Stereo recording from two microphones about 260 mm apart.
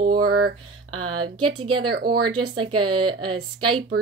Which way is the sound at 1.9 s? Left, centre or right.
Right.